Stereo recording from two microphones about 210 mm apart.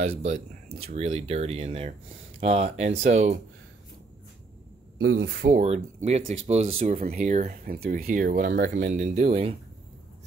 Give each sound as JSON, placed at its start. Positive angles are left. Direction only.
{"t": 0.0, "sound": "speech", "side_deg": -30}
{"t": 5.0, "sound": "speech", "side_deg": -70}
{"t": 5.5, "sound": "speech", "side_deg": -35}